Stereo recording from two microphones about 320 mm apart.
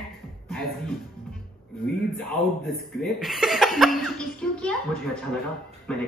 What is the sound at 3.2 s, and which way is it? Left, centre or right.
Speech, centre.